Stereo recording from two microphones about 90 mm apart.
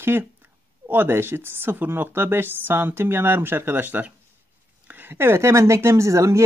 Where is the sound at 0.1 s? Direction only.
20° right (ahead or behind).